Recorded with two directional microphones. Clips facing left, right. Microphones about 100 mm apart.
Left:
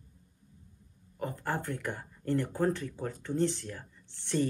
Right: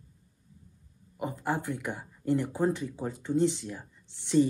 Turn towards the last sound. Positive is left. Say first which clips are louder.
# right 6 dB
turn(degrees=-15)  # may be behind; listen again after turning